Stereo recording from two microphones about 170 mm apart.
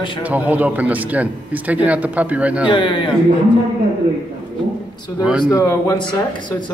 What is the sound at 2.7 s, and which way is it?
Speech, 30° left (ahead or behind).